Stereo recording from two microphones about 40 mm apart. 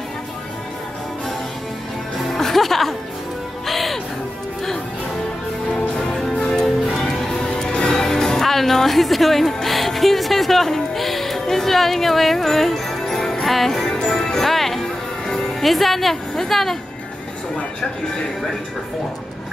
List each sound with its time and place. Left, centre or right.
2.3 s music: centre
6.3 s music: centre
15.6 s a woman's voice: centre